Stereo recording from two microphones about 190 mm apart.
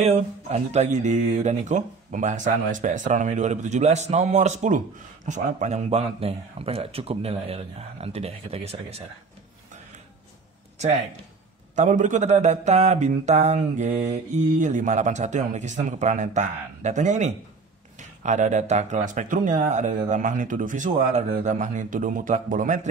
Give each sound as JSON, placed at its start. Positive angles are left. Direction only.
{"t": 0.0, "sound": "speech", "side_deg": -35}
{"t": 10.8, "sound": "speech", "side_deg": -35}